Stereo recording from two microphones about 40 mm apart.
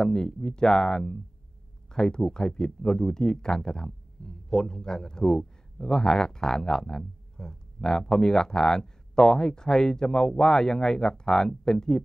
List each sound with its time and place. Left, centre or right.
0.0 s speech: centre